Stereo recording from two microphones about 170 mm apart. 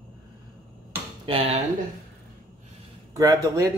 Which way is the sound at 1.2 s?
35° right (ahead or behind).